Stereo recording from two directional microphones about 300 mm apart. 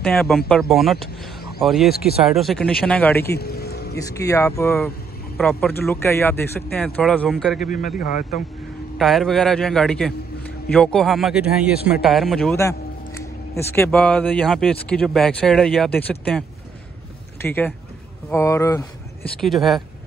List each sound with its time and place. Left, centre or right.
0.0 s a man's voice: centre
1.9 s speech: left
2.2 s a man's voice: centre
3.3 s vehicle: left
4.0 s a man's voice: centre
7.6 s speech: left
8.9 s a man's voice: centre